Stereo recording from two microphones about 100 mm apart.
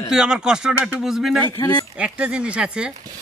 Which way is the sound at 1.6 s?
40° left (ahead or behind).